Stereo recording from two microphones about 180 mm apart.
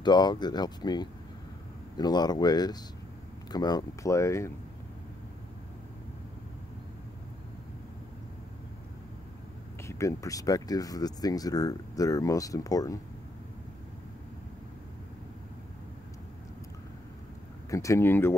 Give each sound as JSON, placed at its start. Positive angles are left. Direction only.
{"t": 0.0, "sound": "speech", "side_deg": 25}
{"t": 9.8, "sound": "speech", "side_deg": 15}
{"t": 17.6, "sound": "speech", "side_deg": 15}